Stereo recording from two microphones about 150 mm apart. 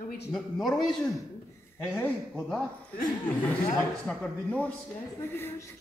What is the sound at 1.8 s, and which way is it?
Speech, 15° left (ahead or behind).